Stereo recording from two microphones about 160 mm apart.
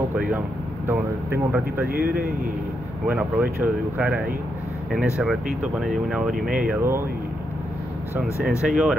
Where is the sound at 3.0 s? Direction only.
10° right (ahead or behind).